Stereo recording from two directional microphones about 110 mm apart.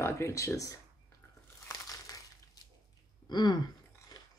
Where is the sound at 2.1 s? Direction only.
30° left (ahead or behind).